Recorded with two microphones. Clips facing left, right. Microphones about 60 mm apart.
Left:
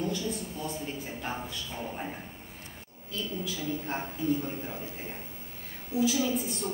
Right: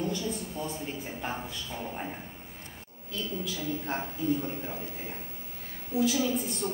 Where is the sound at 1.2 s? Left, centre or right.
Centre.